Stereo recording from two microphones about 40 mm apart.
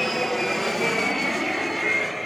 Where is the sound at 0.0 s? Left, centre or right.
Centre.